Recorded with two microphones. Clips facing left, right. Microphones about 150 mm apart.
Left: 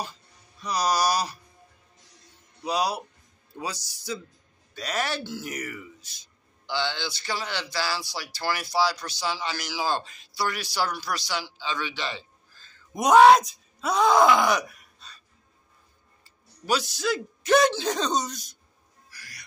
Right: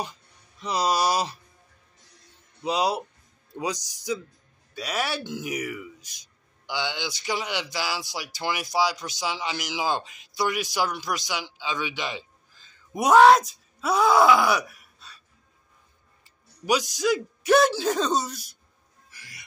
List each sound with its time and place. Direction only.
0.0 s a sound: 20° right (ahead or behind)
2.6 s speech: 20° right (ahead or behind); by 15.2 s 5° right (ahead or behind)
16.3 s speech: 15° right (ahead or behind)
19.0 s owl: 25° right (ahead or behind)